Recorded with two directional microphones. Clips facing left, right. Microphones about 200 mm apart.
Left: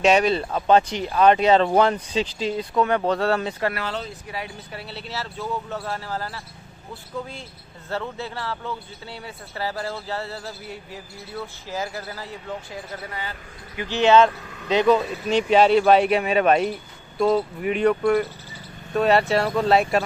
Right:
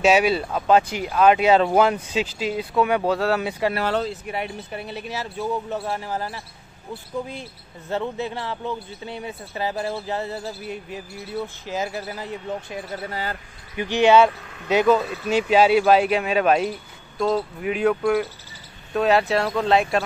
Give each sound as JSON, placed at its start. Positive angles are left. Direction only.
{"t": 0.0, "sound": "speech", "side_deg": -5}
{"t": 3.8, "sound": "speech", "side_deg": -60}
{"t": 4.1, "sound": "speech", "side_deg": -20}
{"t": 13.1, "sound": "speech", "side_deg": -40}
{"t": 13.7, "sound": "speech", "side_deg": -15}